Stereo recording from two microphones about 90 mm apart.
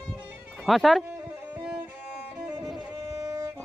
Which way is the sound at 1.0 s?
20° right (ahead or behind).